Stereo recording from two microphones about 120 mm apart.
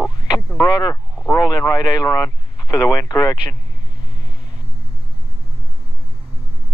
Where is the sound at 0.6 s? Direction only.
30° left (ahead or behind).